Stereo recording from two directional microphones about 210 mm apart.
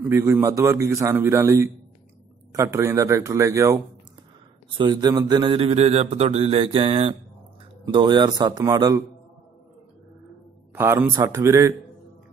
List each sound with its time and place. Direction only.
0.0 s a man's voice: 10° right (ahead or behind)
4.7 s mantra: 20° right (ahead or behind)
10.7 s a man's voice: 10° right (ahead or behind)